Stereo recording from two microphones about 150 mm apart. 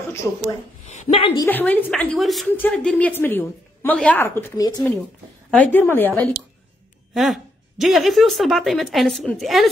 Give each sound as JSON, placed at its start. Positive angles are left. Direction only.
{"t": 1.1, "sound": "a woman's voice", "side_deg": 40}
{"t": 1.4, "sound": "a woman's voice", "side_deg": 10}
{"t": 2.4, "sound": "a woman's voice", "side_deg": 10}
{"t": 4.6, "sound": "speech", "side_deg": 25}
{"t": 5.5, "sound": "a woman's voice", "side_deg": 10}
{"t": 7.2, "sound": "a woman's voice", "side_deg": 0}